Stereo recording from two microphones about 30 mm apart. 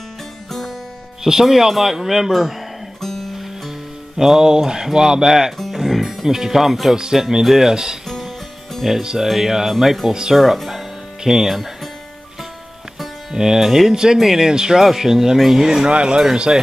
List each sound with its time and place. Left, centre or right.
0.5 s music: centre
1.4 s speech: centre
3.0 s music: centre
4.2 s mantra: centre
5.8 s speech: centre
7.7 s mantra: right
8.8 s speech: centre
11.2 s speech: centre
13.3 s speech: centre
14.9 s speech: centre
15.6 s mantra: centre
15.9 s speech: right
16.5 s mantra: right